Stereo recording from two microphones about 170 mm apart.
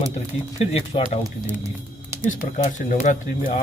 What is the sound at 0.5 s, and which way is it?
Speech, 35° left (ahead or behind).